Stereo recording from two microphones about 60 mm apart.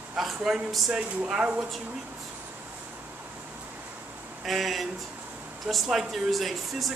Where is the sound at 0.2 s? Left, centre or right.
Centre.